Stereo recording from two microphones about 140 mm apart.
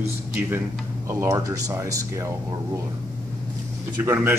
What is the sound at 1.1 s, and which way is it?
Speech, 20° right (ahead or behind).